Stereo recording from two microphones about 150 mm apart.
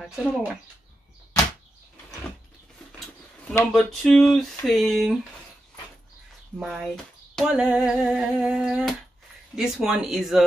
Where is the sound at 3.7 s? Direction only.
Centre (ahead or behind).